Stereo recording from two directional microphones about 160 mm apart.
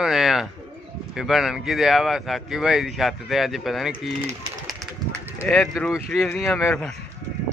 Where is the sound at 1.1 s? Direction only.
Centre (ahead or behind).